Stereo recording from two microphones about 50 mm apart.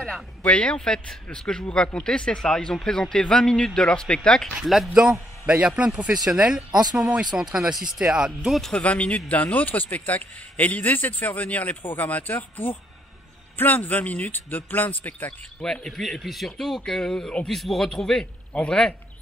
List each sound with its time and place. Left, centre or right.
0.4 s a man's voice: left
4.6 s speech: centre
5.5 s a man's voice: right
8.4 s speech: centre
8.8 s a man's voice: left
15.6 s speech: centre
18.5 s a man's voice: left